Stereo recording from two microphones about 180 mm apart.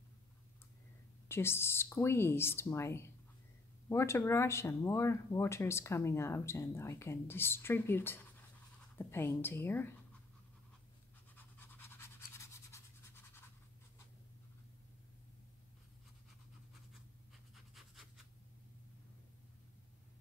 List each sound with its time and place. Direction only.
1.3 s speech: 15° left (ahead or behind)
11.3 s toothbrush: 10° left (ahead or behind)
17.7 s writing: centre (ahead or behind)